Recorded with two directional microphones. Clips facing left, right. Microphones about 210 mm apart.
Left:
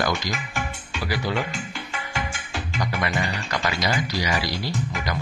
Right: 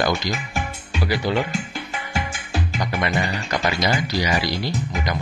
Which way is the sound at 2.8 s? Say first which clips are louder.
Right 2 dB; 25° right (ahead or behind).